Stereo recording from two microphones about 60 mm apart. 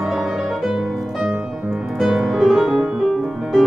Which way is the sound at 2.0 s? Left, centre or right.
Centre.